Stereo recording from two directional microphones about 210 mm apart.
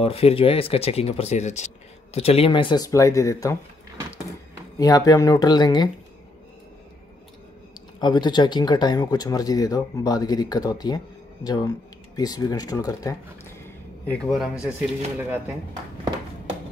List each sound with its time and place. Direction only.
0.0 s speech: 30° left (ahead or behind)
4.7 s speech: 15° left (ahead or behind)
8.0 s speech: 20° left (ahead or behind)
14.0 s speech: 5° left (ahead or behind)
15.1 s speech: 10° right (ahead or behind)